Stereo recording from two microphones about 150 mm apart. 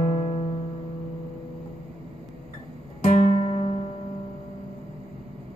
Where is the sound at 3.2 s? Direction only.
40° left (ahead or behind).